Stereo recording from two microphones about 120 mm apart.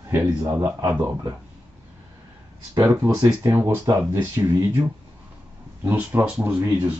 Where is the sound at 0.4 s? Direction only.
30° right (ahead or behind).